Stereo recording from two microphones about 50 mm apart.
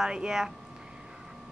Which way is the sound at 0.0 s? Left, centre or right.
Centre.